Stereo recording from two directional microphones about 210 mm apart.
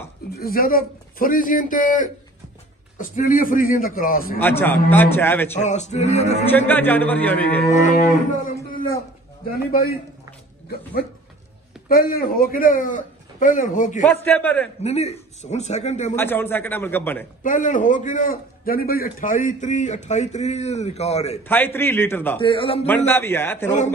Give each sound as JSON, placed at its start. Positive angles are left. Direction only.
{"t": 0.3, "sound": "a man's voice", "side_deg": 45}
{"t": 4.4, "sound": "a man's voice", "side_deg": 10}
{"t": 5.6, "sound": "a man's voice", "side_deg": 35}
{"t": 6.7, "sound": "a man's voice", "side_deg": 10}
{"t": 7.7, "sound": "a man's voice", "side_deg": 35}
{"t": 9.7, "sound": "a man's voice", "side_deg": 45}
{"t": 11.9, "sound": "a man's voice", "side_deg": 45}
{"t": 14.0, "sound": "a man's voice", "side_deg": 10}
{"t": 14.8, "sound": "a man's voice", "side_deg": 30}
{"t": 16.2, "sound": "a man's voice", "side_deg": 10}
{"t": 17.4, "sound": "a man's voice", "side_deg": 35}
{"t": 21.5, "sound": "a man's voice", "side_deg": 10}
{"t": 22.4, "sound": "a man's voice", "side_deg": 25}
{"t": 22.8, "sound": "a man's voice", "side_deg": 10}